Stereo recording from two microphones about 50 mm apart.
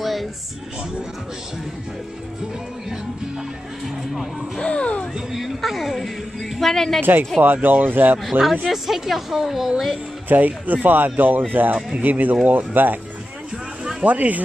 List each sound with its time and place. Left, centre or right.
0.0 s music: centre
3.8 s a woman's voice: centre
4.6 s a sound: left
5.1 s a sound: centre
5.6 s a woman's voice: centre
7.0 s speech: right
8.2 s a woman's voice: centre
10.2 s speech: right
14.0 s speech: right